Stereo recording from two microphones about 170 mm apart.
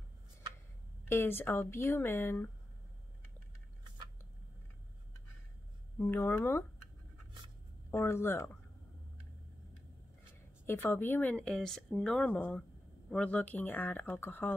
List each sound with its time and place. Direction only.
1.0 s speech: 15° left (ahead or behind)
5.9 s speech: 15° left (ahead or behind)
7.9 s speech: 15° left (ahead or behind)
10.6 s speech: 15° left (ahead or behind)